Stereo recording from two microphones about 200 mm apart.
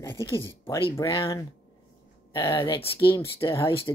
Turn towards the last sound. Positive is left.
turn(degrees=25)  # may be behind; listen again after turning